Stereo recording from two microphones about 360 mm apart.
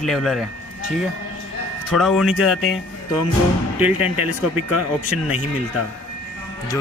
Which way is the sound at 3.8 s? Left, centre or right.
Centre.